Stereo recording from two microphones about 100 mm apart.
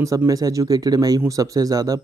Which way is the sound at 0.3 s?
35° right (ahead or behind).